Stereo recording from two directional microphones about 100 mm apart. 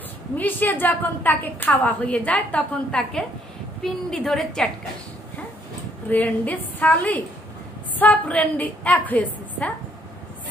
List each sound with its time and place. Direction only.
0.4 s a woman's voice: 20° left (ahead or behind)
6.0 s a woman's voice: 15° left (ahead or behind)